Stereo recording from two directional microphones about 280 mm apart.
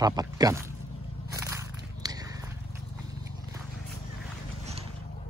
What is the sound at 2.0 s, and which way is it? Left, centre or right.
Biting, centre.